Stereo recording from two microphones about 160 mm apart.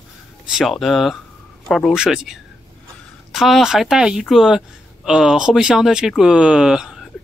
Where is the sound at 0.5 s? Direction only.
Centre (ahead or behind).